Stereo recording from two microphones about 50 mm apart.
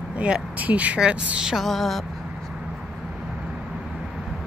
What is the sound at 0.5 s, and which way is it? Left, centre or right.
Speech, right.